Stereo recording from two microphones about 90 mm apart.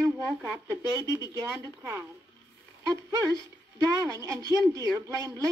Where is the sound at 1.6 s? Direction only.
30° right (ahead or behind).